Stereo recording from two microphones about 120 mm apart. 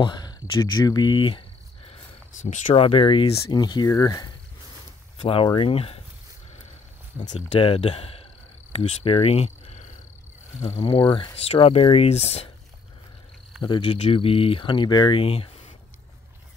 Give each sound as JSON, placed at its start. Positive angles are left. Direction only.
{"t": 0.0, "sound": "speech", "side_deg": 35}
{"t": 2.4, "sound": "speech", "side_deg": 90}
{"t": 2.7, "sound": "speech", "side_deg": 50}
{"t": 3.5, "sound": "speech", "side_deg": 35}
{"t": 5.1, "sound": "speech", "side_deg": 45}
{"t": 7.2, "sound": "speech", "side_deg": 75}
{"t": 7.6, "sound": "speech", "side_deg": 55}
{"t": 10.9, "sound": "speech", "side_deg": 45}
{"t": 13.6, "sound": "speech", "side_deg": 45}